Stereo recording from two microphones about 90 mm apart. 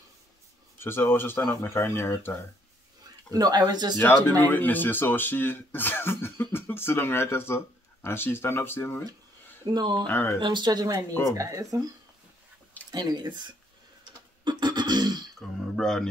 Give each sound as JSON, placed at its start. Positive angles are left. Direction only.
{"t": 0.7, "sound": "speech", "side_deg": 25}
{"t": 3.3, "sound": "speech", "side_deg": -45}
{"t": 4.0, "sound": "speech", "side_deg": 20}
{"t": 9.7, "sound": "speech", "side_deg": -55}
{"t": 10.0, "sound": "speech", "side_deg": 25}
{"t": 10.4, "sound": "speech", "side_deg": -55}
{"t": 12.9, "sound": "speech", "side_deg": -50}
{"t": 14.4, "sound": "throat clearing", "side_deg": -55}
{"t": 15.7, "sound": "a man's voice", "side_deg": 5}